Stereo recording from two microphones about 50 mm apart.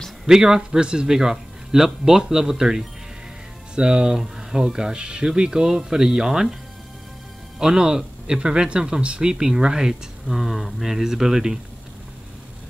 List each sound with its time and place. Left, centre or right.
0.3 s speech: centre
7.5 s speech: centre